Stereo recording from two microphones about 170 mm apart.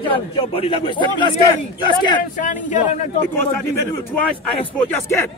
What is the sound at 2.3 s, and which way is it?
Speech, 50° left (ahead or behind).